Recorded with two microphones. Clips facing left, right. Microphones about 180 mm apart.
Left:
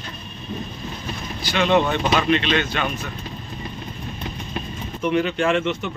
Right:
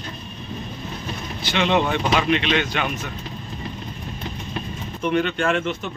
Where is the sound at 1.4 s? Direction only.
20° right (ahead or behind).